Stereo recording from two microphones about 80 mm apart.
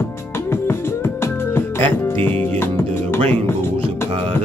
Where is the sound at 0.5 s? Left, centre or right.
Left.